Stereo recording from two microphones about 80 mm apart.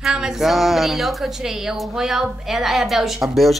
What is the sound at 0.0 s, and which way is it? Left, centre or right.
Speech, centre.